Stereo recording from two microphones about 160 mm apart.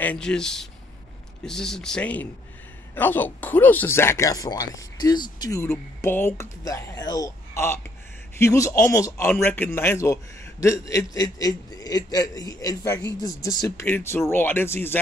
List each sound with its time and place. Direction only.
0.0 s a man's voice: 5° left (ahead or behind)